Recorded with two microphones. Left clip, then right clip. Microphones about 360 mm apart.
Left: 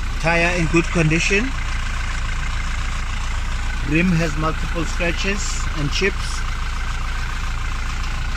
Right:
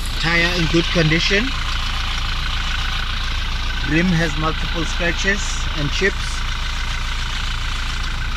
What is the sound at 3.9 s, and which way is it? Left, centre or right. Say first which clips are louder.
Speech: right 1 dB; centre.